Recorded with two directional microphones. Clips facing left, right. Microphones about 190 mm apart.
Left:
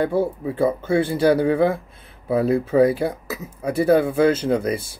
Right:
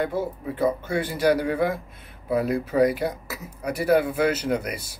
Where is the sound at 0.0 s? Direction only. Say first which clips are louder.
Left 6 dB; 30° left (ahead or behind).